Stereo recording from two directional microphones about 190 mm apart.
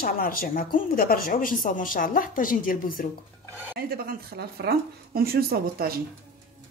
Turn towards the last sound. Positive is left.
turn(degrees=-50)  # may be behind; listen again after turning